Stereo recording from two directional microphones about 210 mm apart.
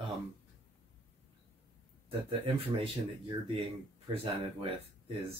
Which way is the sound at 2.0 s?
25° right (ahead or behind).